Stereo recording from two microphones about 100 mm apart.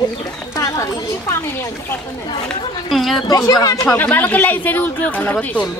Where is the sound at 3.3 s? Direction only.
35° left (ahead or behind).